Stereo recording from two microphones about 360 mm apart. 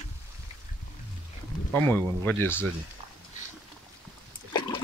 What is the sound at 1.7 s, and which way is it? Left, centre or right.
Speech, centre.